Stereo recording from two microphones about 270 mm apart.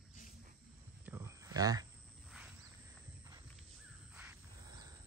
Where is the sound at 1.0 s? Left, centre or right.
Centre.